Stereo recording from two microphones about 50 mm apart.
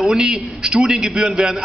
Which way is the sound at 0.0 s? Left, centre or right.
Centre.